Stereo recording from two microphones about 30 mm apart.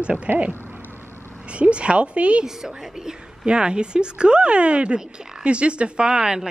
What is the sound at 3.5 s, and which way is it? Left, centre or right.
Speech, right.